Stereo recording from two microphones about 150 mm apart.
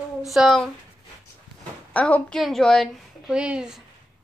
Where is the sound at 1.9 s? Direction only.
10° left (ahead or behind).